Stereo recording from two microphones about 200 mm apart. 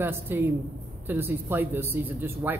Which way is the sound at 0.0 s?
10° right (ahead or behind).